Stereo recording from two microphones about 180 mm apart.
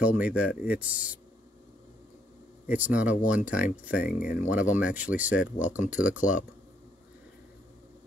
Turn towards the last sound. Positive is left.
turn(degrees=-10)  # may be behind; listen again after turning